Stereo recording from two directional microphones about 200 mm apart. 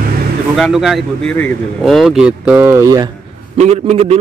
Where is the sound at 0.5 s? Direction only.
Centre (ahead or behind); by 3.1 s 15° right (ahead or behind).